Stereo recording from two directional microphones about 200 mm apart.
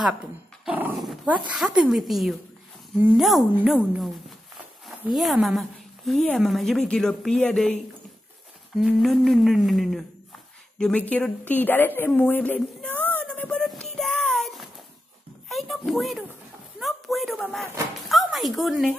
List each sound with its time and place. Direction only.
0.0 s dog: 5° right (ahead or behind)
1.5 s a woman's voice: 5° right (ahead or behind)
5.1 s a woman's voice: centre (ahead or behind)
10.8 s a sound: 5° left (ahead or behind)
18.0 s speech: centre (ahead or behind)